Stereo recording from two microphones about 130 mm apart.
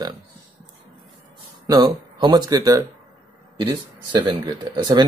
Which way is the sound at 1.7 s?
30° right (ahead or behind).